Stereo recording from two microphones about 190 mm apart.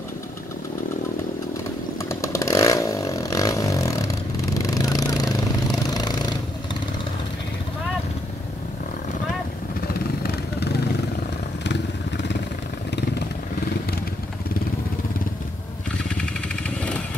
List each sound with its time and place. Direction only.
2.0 s chainsaw: 15° left (ahead or behind)
5.9 s vehicle: 20° left (ahead or behind)
16.6 s motorcycle: 5° left (ahead or behind)